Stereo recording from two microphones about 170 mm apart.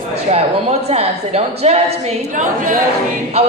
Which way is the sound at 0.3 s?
40° right (ahead or behind).